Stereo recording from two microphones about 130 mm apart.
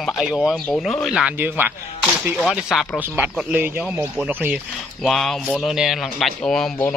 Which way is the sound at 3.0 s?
15° right (ahead or behind).